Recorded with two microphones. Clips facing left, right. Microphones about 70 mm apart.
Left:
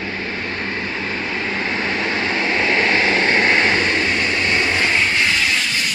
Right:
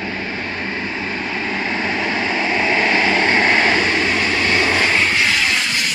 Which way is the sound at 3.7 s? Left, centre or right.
Right.